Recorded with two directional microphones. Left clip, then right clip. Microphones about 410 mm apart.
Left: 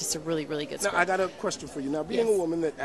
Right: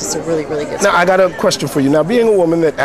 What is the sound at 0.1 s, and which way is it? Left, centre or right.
Speech, left.